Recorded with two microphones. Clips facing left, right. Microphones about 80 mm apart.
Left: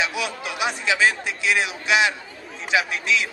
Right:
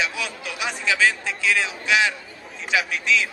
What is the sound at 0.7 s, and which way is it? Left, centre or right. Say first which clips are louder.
A man's voice: even; centre.